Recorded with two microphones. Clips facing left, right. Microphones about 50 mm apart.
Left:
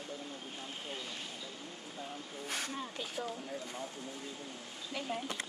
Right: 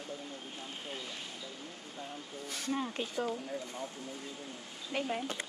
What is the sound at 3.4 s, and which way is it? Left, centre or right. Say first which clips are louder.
Speech: right 2 dB; centre.